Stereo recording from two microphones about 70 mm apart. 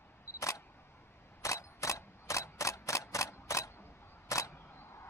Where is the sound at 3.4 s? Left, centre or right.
Left.